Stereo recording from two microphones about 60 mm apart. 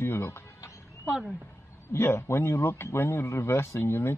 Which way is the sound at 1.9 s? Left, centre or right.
Left.